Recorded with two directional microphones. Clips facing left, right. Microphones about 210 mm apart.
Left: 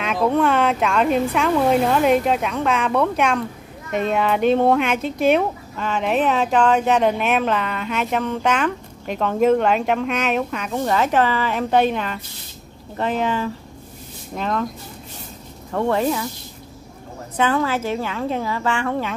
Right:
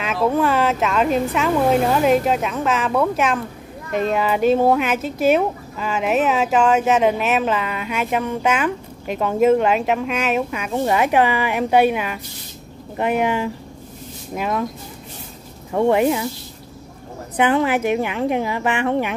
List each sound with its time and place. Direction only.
0.0 s a woman's voice: 5° right (ahead or behind)
15.7 s a woman's voice: 15° right (ahead or behind)
17.4 s a woman's voice: 15° right (ahead or behind)